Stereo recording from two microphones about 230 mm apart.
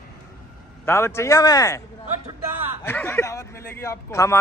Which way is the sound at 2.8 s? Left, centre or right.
Centre.